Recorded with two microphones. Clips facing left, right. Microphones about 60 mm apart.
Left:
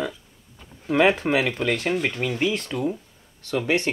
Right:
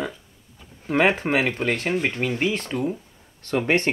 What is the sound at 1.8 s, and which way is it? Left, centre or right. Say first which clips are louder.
Speech: even; centre.